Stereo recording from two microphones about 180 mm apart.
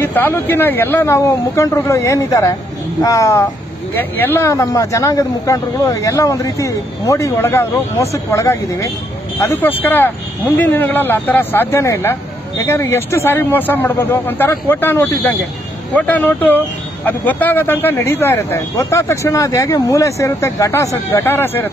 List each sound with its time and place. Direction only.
0.0 s speech: 10° left (ahead or behind)